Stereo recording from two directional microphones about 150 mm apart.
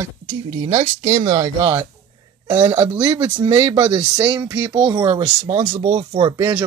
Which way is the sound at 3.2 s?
35° right (ahead or behind).